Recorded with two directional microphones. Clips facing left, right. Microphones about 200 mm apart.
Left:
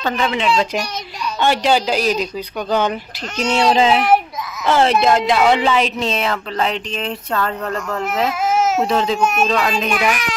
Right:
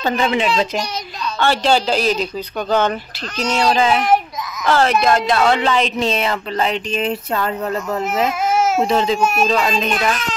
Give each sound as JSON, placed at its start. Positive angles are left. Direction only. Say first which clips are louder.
{"t": 0.0, "sound": "a child's voice", "louder": "right 1 dB", "side_deg": -5}
{"t": 1.4, "sound": "a child's voice", "louder": "even", "side_deg": 15}
{"t": 3.3, "sound": "a woman's voice", "louder": "left 2 dB", "side_deg": 25}